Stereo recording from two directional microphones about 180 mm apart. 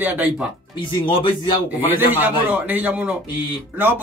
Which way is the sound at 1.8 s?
10° right (ahead or behind).